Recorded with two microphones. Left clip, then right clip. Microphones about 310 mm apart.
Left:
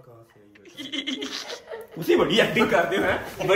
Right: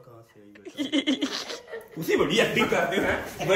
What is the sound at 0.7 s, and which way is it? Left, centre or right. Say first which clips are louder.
Laughter: right 4 dB; centre.